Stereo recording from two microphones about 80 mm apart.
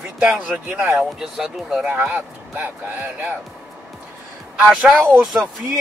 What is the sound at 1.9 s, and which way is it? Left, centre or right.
Speech, right.